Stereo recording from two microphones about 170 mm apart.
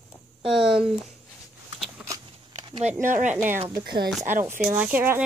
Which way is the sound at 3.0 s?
45° right (ahead or behind).